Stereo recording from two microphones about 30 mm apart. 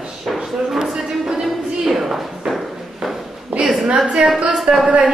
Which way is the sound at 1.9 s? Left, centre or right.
Centre.